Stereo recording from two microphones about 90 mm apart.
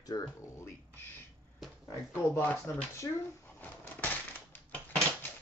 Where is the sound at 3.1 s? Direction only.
40° left (ahead or behind).